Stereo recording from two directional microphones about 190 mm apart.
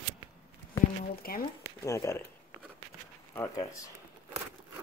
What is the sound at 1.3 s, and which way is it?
Speech, 50° left (ahead or behind).